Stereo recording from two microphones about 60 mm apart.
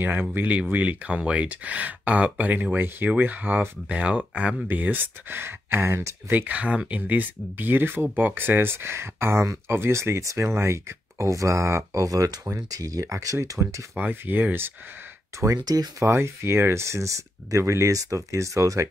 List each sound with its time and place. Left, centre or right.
0.0 s speech: right
3.9 s speech: right
6.3 s speech: right
13.9 s speech: right
15.4 s speech: right
16.1 s speech: right